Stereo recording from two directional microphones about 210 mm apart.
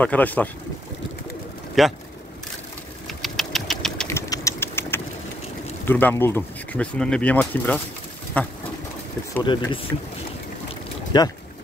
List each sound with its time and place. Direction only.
0.0 s speech: 5° left (ahead or behind)
1.8 s speech: centre (ahead or behind)
3.1 s sewing machine: centre (ahead or behind)
3.8 s engine: 5° left (ahead or behind)
5.9 s speech: 10° left (ahead or behind)
9.3 s speech: 20° left (ahead or behind)
11.1 s speech: 20° left (ahead or behind)